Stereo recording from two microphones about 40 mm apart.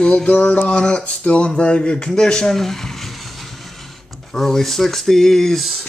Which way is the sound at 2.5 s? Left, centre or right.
Centre.